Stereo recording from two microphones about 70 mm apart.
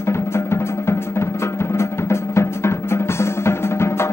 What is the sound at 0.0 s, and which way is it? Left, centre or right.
Music, left.